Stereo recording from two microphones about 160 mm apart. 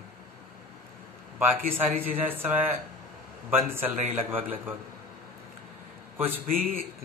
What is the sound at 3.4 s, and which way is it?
A man's voice, 10° right (ahead or behind).